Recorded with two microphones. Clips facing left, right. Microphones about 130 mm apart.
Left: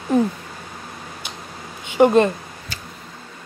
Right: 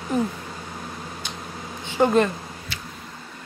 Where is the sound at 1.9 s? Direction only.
20° left (ahead or behind).